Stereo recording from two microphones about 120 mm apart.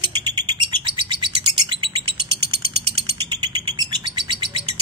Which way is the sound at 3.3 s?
40° right (ahead or behind).